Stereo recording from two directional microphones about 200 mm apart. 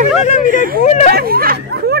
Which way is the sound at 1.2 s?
50° right (ahead or behind).